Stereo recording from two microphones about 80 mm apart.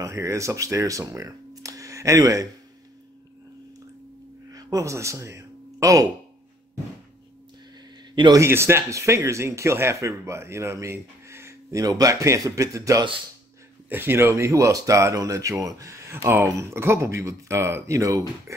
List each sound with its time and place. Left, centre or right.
0.0 s speech: right
4.5 s a sound: right
8.5 s speech: right
11.8 s speech: right
13.8 s speech: right